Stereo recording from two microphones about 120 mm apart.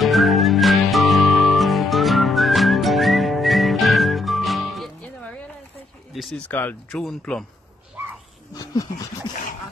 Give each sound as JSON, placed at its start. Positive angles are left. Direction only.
{"t": 0.0, "sound": "music", "side_deg": 0}
{"t": 6.5, "sound": "speech", "side_deg": 15}
{"t": 8.5, "sound": "a sound", "side_deg": 30}